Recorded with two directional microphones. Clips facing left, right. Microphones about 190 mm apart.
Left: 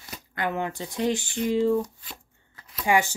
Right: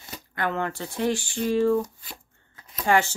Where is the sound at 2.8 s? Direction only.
15° left (ahead or behind).